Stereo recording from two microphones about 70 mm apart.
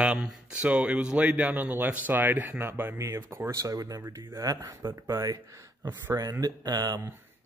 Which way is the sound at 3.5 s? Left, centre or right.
Right.